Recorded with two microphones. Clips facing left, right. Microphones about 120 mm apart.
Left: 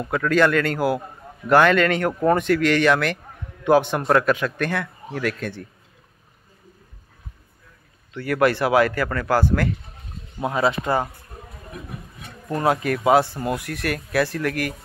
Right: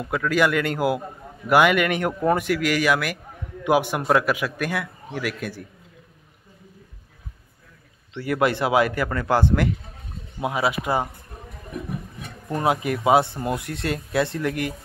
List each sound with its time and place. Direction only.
0.0 s a man's voice: 5° right (ahead or behind)
8.1 s a man's voice: 20° right (ahead or behind)
10.4 s a man's voice: 10° right (ahead or behind)
12.4 s speech: 15° right (ahead or behind)